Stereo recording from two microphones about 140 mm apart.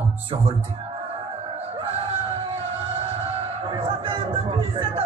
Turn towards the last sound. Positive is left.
turn(degrees=-40)  # may be behind; listen again after turning